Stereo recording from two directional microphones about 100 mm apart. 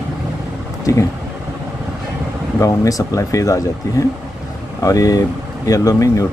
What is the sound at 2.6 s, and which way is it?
Speech, 35° left (ahead or behind).